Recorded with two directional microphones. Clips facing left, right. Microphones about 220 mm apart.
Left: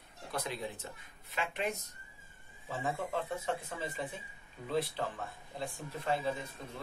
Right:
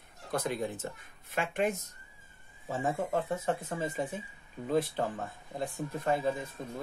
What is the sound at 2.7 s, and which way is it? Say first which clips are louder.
Speech: right 5 dB; 45° right (ahead or behind).